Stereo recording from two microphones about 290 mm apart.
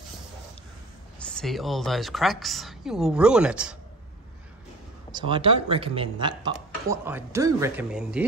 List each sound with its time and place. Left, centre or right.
1.2 s a woman's voice: centre
5.1 s speech: centre